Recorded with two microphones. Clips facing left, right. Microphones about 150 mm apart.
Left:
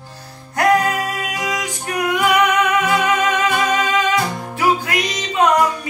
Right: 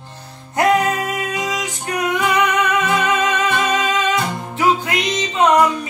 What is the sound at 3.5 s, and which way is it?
Music, 20° right (ahead or behind).